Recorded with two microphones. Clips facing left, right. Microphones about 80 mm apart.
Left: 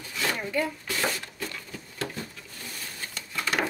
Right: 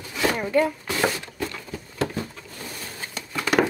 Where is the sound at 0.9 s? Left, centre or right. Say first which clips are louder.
Right 5 dB; right.